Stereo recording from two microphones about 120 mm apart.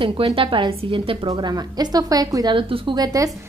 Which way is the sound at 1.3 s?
35° right (ahead or behind).